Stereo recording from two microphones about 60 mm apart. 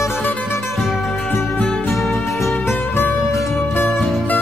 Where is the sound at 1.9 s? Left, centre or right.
Centre.